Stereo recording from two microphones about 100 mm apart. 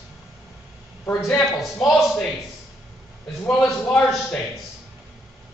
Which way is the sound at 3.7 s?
10° left (ahead or behind).